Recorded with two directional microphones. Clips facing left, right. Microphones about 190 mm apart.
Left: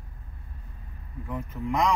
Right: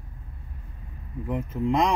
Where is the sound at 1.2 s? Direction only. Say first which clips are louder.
Right 6 dB; 25° right (ahead or behind).